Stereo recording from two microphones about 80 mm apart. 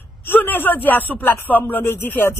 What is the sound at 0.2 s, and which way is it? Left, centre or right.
A man's voice, left.